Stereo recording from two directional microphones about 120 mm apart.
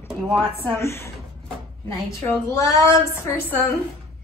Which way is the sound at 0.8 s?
20° left (ahead or behind).